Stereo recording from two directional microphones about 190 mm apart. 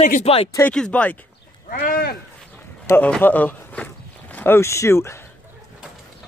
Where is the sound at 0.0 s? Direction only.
35° left (ahead or behind).